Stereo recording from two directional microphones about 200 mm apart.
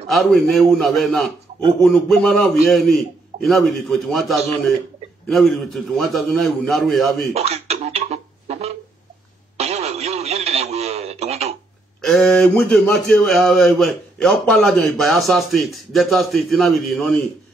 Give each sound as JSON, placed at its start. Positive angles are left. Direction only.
{"t": 0.1, "sound": "speech", "side_deg": 0}
{"t": 7.3, "sound": "a sound", "side_deg": -30}
{"t": 9.6, "sound": "radio", "side_deg": -35}
{"t": 12.0, "sound": "speech", "side_deg": 0}